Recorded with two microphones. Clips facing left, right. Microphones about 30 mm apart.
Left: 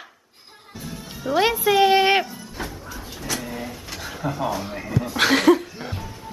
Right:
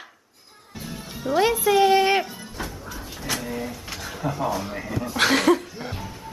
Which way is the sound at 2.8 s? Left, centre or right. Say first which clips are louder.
Even; centre.